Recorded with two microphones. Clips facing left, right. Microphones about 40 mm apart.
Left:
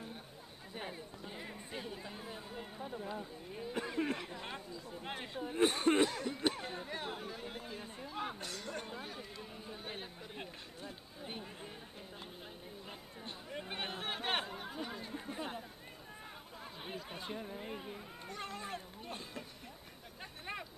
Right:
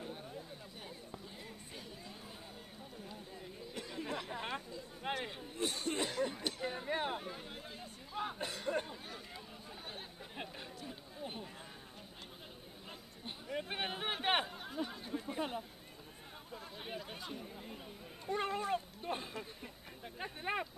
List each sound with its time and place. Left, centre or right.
1.7 s a sound: left
4.3 s speech: centre
5.4 s speech: left
6.6 s speech: centre
6.9 s speech: right
7.2 s speech: centre
8.4 s speech: right
9.7 s chatter: centre
13.2 s a sound: centre
14.5 s chatter: centre
15.3 s speech: centre
16.8 s chatter: centre
17.2 s speech: left
18.3 s speech: right